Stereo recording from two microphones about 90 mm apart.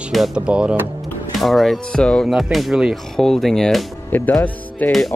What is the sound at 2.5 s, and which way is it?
Speech, 5° right (ahead or behind).